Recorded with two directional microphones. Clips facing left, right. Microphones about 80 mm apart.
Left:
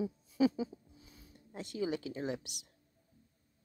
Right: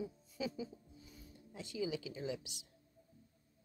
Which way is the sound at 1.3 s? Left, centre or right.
Left.